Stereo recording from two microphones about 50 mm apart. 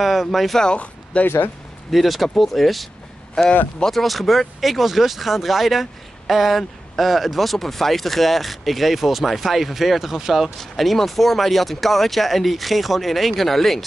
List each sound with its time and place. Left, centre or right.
0.0 s speech: centre
1.2 s speech: left
1.9 s speech: centre
10.6 s speech: centre